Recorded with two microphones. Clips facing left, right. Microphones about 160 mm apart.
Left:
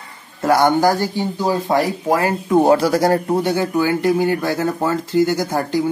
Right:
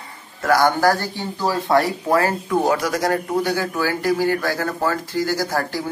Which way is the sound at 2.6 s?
30° left (ahead or behind).